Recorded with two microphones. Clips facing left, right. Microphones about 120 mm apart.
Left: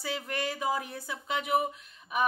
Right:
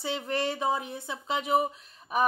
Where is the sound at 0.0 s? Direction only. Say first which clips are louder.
Right 4 dB; 25° right (ahead or behind).